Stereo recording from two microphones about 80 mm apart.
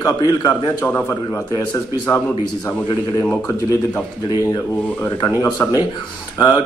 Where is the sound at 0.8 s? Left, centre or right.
Centre.